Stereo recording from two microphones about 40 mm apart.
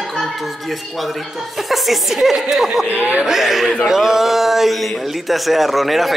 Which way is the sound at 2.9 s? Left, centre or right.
Right.